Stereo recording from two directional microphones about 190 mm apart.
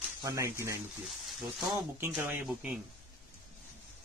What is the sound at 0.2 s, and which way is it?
Speech, 15° right (ahead or behind).